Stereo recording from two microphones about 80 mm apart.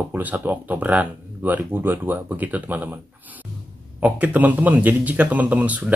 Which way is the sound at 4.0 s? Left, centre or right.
Centre.